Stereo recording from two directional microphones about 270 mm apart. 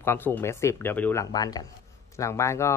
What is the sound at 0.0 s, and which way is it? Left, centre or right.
Speech, centre.